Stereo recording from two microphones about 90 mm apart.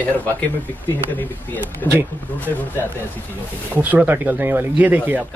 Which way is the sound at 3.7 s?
20° right (ahead or behind).